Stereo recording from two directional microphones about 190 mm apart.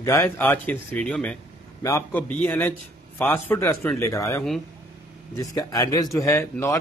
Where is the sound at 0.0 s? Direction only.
15° left (ahead or behind).